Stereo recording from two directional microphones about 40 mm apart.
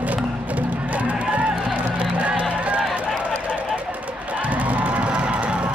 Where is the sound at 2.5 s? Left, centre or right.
Right.